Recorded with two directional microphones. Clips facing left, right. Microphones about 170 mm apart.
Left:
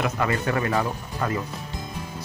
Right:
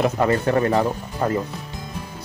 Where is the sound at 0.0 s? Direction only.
35° right (ahead or behind).